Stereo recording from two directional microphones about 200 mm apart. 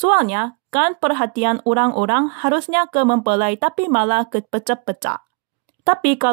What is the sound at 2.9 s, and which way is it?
Speech, 45° right (ahead or behind).